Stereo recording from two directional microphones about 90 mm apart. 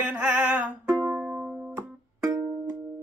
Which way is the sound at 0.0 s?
15° right (ahead or behind).